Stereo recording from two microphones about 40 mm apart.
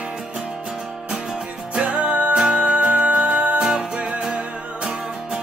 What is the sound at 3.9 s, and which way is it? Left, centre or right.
Music, right.